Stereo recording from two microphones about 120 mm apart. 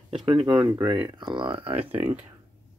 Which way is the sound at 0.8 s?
40° right (ahead or behind).